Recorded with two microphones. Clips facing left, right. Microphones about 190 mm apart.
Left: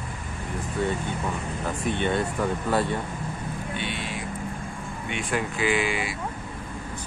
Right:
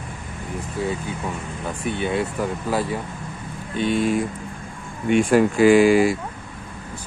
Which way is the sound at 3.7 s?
40° right (ahead or behind).